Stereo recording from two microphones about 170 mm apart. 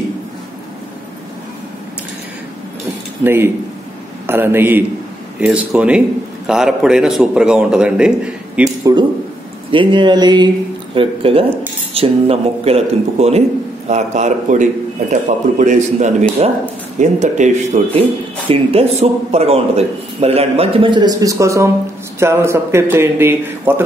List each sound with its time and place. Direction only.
4.3 s a man's voice: 10° right (ahead or behind)
8.9 s a man's voice: 20° right (ahead or behind)
9.7 s a sound: 30° right (ahead or behind)
11.0 s a man's voice: 35° right (ahead or behind); by 23.7 s 15° right (ahead or behind)